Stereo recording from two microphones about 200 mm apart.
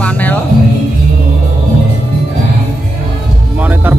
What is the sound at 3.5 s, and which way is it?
Music, 10° right (ahead or behind).